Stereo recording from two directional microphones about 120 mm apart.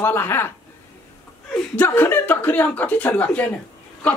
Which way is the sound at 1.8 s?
15° left (ahead or behind).